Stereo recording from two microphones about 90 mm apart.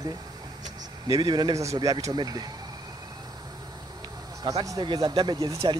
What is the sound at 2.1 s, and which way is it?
Speech, 50° right (ahead or behind).